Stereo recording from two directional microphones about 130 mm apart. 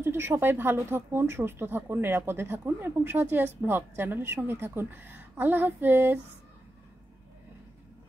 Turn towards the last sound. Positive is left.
turn(degrees=-15)  # may be behind; listen again after turning